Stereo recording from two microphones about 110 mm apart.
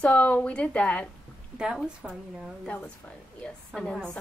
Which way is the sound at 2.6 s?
15° left (ahead or behind).